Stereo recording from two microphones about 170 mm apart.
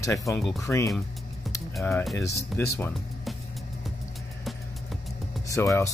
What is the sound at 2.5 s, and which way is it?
Speech, 10° left (ahead or behind).